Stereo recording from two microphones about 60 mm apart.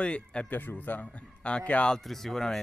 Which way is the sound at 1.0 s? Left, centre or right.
Centre.